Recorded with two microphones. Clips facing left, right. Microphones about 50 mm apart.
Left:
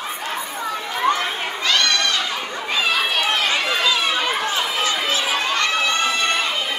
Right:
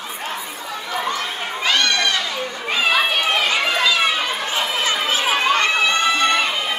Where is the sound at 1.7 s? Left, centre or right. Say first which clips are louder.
Right 1 dB; centre.